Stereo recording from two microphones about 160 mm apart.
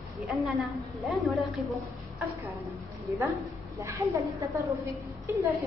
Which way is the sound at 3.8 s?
20° right (ahead or behind).